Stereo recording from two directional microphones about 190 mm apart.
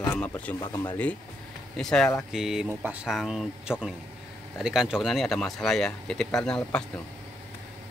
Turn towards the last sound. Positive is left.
turn(degrees=5)  # may be behind; listen again after turning